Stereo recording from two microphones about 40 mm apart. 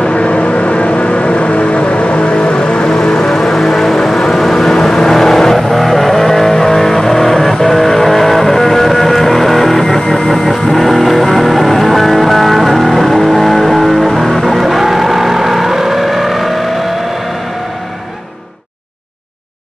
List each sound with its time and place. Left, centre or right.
0.0 s vehicle: left; by 16.4 s centre